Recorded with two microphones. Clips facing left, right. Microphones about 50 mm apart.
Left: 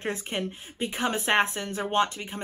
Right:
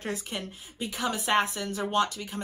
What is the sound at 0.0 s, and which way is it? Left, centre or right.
A woman's voice, left.